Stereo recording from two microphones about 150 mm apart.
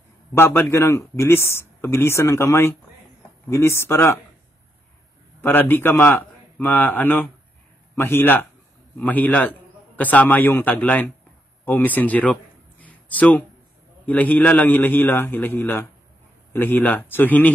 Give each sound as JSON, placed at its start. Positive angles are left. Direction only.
{"t": 0.3, "sound": "speech", "side_deg": 15}
{"t": 5.4, "sound": "a man's voice", "side_deg": 15}
{"t": 11.6, "sound": "a sound", "side_deg": 10}
{"t": 14.0, "sound": "speech", "side_deg": 10}